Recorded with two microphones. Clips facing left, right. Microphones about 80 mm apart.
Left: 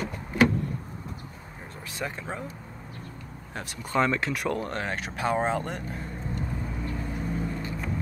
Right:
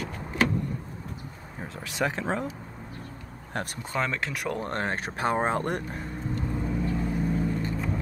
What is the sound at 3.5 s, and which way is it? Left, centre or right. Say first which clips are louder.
Speech: right 5 dB; right.